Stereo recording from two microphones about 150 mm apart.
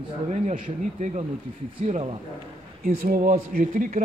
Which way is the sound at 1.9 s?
40° right (ahead or behind).